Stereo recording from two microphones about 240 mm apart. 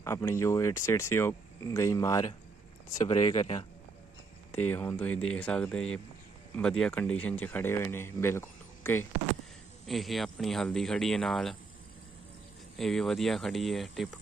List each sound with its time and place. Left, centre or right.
0.0 s speech: centre
4.6 s speech: centre
12.7 s speech: centre